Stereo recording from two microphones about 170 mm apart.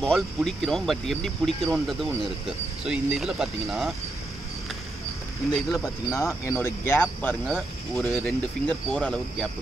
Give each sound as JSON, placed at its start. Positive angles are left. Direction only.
{"t": 0.0, "sound": "speech", "side_deg": 0}
{"t": 5.5, "sound": "speech", "side_deg": 0}
{"t": 6.1, "sound": "speech", "side_deg": 15}